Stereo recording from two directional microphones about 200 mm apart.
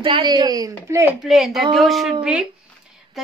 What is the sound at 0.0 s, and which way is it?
Speech, 25° right (ahead or behind).